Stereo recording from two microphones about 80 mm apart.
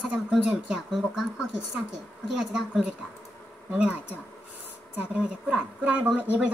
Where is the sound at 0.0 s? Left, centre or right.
Centre.